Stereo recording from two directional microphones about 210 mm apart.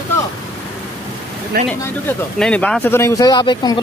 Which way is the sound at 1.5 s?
45° right (ahead or behind).